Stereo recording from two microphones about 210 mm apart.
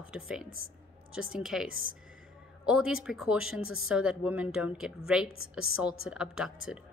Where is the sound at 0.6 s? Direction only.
75° right (ahead or behind).